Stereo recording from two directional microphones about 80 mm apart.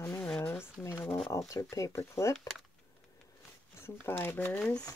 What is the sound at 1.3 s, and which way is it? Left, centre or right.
Speech, left.